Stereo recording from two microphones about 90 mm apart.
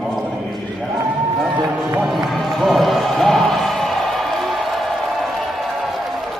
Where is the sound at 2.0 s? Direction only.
Centre (ahead or behind).